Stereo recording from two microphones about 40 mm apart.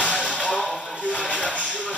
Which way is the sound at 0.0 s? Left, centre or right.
Left.